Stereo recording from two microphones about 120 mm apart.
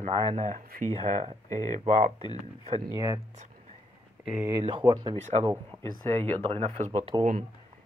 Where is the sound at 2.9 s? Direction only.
30° right (ahead or behind).